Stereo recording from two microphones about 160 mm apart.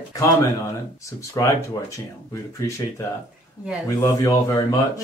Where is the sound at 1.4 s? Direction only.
20° left (ahead or behind).